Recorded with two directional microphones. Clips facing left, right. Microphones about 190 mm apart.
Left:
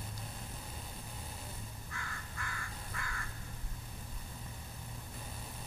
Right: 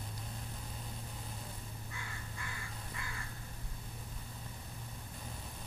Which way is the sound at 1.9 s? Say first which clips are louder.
Left 1 dB; 20° right (ahead or behind).